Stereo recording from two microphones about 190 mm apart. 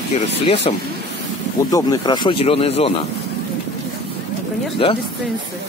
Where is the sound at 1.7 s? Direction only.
20° left (ahead or behind).